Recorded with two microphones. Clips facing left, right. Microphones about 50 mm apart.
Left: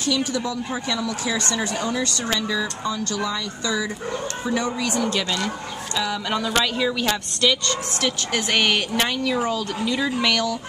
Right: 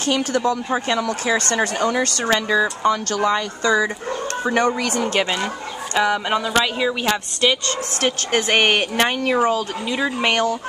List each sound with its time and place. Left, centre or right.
0.0 s speech: right
5.2 s speech: right
8.0 s a woman's voice: right
9.8 s speech: right
10.2 s a woman's voice: right